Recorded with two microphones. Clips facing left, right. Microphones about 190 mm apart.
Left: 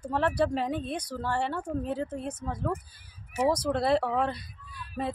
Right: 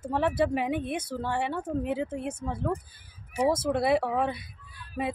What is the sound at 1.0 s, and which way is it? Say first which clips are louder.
Speech: right 1 dB; 25° right (ahead or behind).